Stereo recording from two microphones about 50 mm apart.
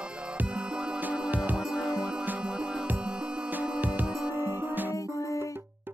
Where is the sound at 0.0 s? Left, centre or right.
Right.